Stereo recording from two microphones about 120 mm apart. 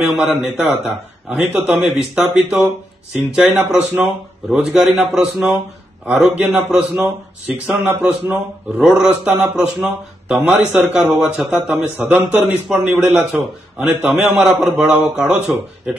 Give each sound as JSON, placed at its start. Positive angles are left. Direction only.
{"t": 0.0, "sound": "a man's voice", "side_deg": -5}
{"t": 3.7, "sound": "a man's voice", "side_deg": -15}
{"t": 4.5, "sound": "a man's voice", "side_deg": -5}